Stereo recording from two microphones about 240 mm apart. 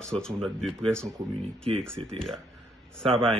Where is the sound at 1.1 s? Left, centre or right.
Right.